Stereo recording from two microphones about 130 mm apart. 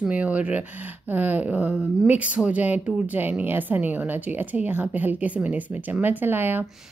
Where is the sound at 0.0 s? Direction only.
10° right (ahead or behind).